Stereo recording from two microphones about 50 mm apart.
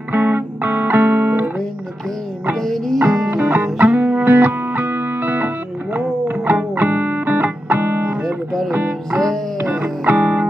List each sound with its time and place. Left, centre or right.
0.1 s music: right
2.5 s music: centre
3.0 s music: right
9.6 s music: right